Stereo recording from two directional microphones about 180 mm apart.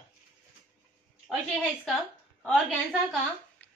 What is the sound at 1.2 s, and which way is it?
Speech, centre (ahead or behind).